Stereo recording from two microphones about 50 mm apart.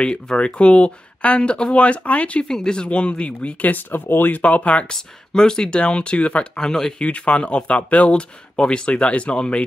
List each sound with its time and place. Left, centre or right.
0.0 s speech: centre
2.4 s speech: centre; by 4.9 s left
4.9 s speech: centre
7.1 s speech: left